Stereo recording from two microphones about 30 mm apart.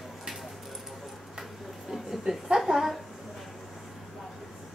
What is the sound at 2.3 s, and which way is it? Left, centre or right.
Speech, right.